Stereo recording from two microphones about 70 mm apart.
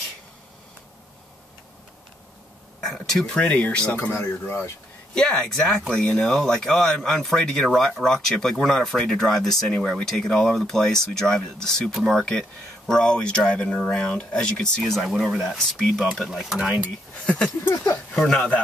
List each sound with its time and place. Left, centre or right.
2.8 s speech: centre
3.3 s speech: left
4.0 s speech: left
5.1 s speech: centre
14.8 s speech: centre
16.3 s speech: centre
18.1 s speech: centre